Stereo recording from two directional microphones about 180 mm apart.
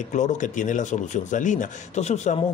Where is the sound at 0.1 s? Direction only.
40° left (ahead or behind).